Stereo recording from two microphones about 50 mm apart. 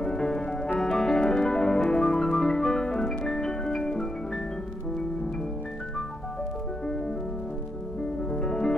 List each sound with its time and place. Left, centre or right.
0.0 s music: centre
8.3 s music: centre